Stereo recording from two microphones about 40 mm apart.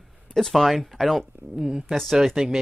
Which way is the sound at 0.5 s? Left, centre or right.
Centre.